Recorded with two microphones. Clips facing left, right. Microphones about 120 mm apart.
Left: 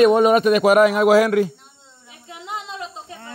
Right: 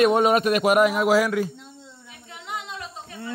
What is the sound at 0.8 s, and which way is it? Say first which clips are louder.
Speech: left 5 dB; 85° left.